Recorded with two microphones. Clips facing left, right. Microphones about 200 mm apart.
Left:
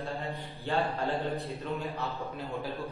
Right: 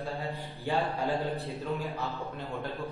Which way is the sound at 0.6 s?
15° right (ahead or behind).